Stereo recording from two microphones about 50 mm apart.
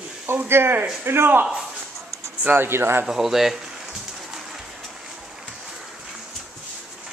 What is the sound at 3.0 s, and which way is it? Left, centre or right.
Pigeon, centre.